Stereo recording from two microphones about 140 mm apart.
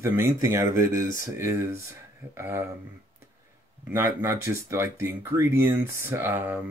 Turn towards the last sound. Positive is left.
turn(degrees=-15)  # may be behind; listen again after turning